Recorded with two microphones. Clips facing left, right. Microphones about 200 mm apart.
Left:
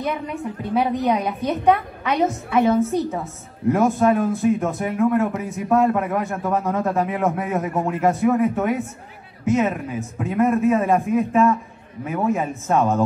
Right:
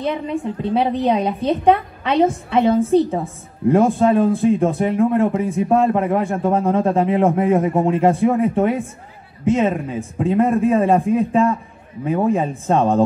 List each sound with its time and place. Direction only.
0.0 s a woman's voice: 30° right (ahead or behind)